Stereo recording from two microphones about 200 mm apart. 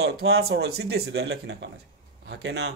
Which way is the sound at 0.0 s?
55° right (ahead or behind).